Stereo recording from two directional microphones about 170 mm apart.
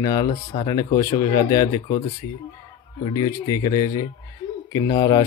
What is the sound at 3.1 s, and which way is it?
Speech, 20° left (ahead or behind).